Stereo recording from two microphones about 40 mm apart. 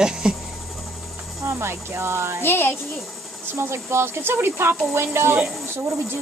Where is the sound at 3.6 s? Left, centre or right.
Right.